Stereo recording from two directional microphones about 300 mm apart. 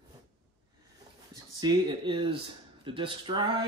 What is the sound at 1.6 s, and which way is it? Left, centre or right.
Speech, centre.